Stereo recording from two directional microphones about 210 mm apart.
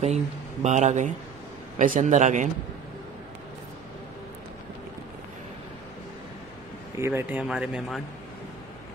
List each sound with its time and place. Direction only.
0.0 s a man's voice: 30° right (ahead or behind)
7.0 s speech: 10° right (ahead or behind)